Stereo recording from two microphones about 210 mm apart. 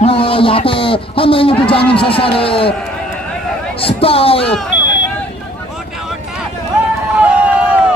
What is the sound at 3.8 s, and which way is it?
Speech, 25° left (ahead or behind).